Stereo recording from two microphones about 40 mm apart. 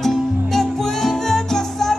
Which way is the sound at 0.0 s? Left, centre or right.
Centre.